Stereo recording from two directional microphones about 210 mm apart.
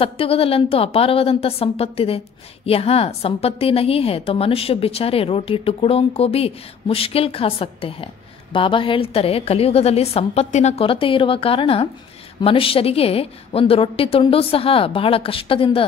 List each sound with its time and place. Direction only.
0.0 s a woman's voice: 25° left (ahead or behind)